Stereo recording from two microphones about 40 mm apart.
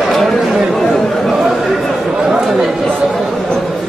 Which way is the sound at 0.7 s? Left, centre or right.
Centre.